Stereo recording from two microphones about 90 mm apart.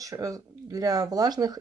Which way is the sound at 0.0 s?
40° right (ahead or behind).